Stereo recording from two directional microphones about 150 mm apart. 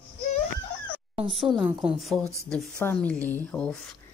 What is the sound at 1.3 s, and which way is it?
A woman's voice, centre (ahead or behind).